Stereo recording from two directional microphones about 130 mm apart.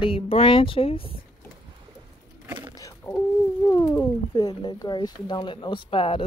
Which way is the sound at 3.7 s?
25° left (ahead or behind).